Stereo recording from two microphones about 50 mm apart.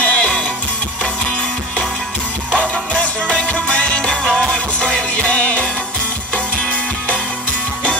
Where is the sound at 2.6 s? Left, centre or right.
Left.